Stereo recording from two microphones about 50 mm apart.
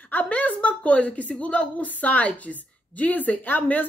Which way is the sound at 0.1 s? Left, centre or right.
Left.